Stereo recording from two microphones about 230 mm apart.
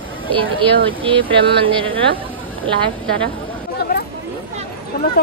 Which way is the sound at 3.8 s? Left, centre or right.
Left.